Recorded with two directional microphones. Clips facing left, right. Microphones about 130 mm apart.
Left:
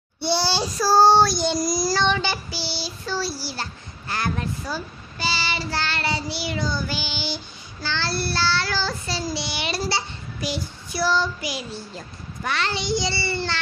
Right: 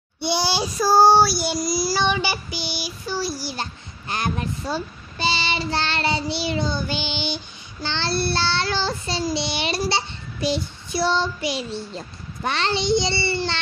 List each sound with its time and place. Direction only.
0.2 s child singing: 15° right (ahead or behind)